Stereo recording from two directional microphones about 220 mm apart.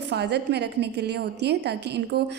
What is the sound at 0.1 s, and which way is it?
A woman's voice, 50° right (ahead or behind).